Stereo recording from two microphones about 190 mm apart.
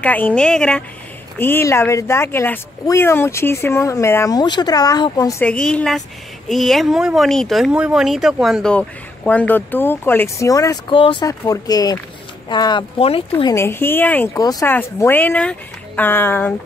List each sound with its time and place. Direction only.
0.0 s a woman's voice: 10° left (ahead or behind)
5.4 s a woman's voice: 5° left (ahead or behind); by 13.6 s 25° left (ahead or behind)
13.6 s speech: 10° left (ahead or behind)